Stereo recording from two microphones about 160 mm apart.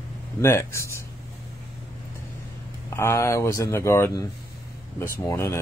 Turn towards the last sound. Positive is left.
turn(degrees=15)  # may be behind; listen again after turning